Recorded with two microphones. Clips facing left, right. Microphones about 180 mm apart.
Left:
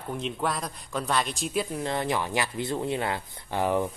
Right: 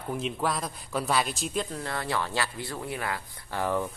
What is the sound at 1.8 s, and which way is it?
Speech, 20° left (ahead or behind).